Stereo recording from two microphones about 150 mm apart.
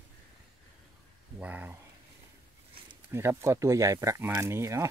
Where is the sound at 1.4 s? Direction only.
10° right (ahead or behind).